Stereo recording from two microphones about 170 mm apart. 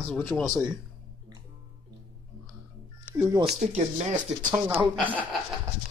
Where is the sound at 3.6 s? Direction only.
40° right (ahead or behind).